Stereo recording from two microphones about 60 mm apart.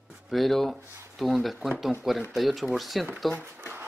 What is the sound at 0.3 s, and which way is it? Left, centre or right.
Speech, centre.